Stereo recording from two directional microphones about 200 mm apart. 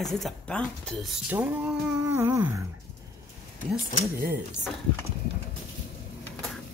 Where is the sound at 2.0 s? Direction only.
10° right (ahead or behind).